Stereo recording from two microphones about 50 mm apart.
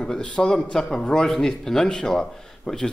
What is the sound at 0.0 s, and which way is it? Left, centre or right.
A man's voice, centre.